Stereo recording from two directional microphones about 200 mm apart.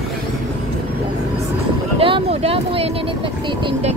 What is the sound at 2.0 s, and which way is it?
Speech, 25° right (ahead or behind).